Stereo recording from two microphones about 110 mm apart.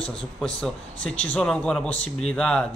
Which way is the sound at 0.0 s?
5° left (ahead or behind).